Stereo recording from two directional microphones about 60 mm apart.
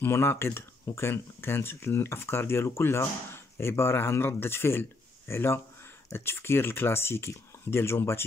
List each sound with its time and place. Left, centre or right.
0.0 s speech: left